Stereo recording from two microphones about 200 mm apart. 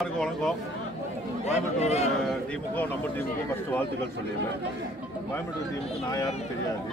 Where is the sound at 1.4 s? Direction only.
35° left (ahead or behind).